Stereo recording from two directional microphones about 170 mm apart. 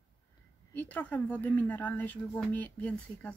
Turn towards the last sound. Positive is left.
turn(degrees=10)  # may be behind; listen again after turning